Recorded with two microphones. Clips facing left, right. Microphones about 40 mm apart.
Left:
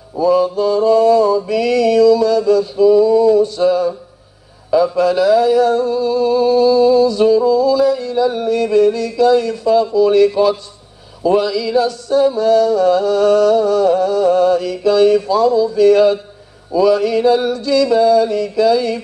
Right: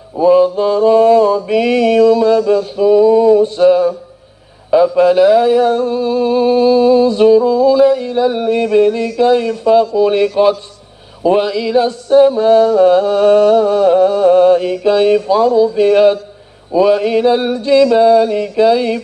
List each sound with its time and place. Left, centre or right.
0.2 s mantra: right
4.9 s mantra: right